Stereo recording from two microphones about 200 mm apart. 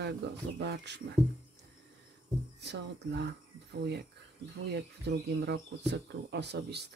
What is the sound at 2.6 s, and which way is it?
Speech, 55° right (ahead or behind).